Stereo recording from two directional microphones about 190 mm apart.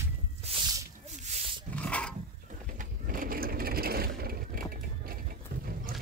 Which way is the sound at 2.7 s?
45° right (ahead or behind).